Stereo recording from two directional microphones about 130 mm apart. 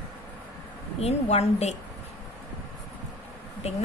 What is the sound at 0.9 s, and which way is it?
Speech, 55° left (ahead or behind).